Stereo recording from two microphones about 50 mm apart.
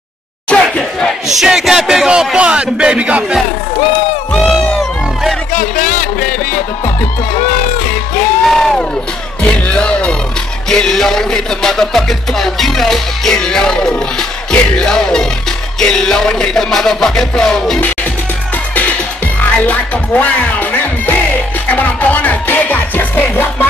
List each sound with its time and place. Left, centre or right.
0.5 s a sound: centre
1.2 s music: centre
2.0 s speech: centre
4.4 s music: centre
8.5 s a sound: centre
9.4 s music: left
19.5 s music: left